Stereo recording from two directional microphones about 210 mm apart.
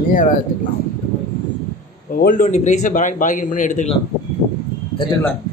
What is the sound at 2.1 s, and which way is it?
Speech, 40° left (ahead or behind).